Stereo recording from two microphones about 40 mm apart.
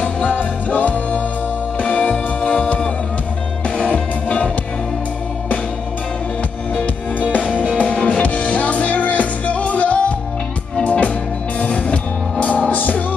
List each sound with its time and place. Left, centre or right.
0.0 s music: left
7.3 s music: left